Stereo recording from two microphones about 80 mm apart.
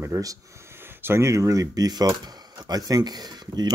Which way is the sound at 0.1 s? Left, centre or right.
Right.